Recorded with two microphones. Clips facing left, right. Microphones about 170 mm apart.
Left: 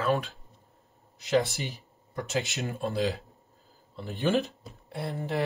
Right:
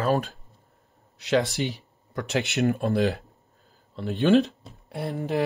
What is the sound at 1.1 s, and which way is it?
Speech, 70° right (ahead or behind).